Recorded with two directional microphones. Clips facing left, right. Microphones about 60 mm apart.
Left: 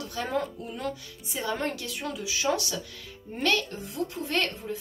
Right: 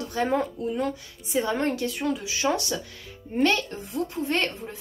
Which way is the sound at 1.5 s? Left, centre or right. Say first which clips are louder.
Right 6 dB; right.